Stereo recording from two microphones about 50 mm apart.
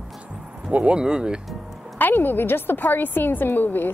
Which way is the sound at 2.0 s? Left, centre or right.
Left.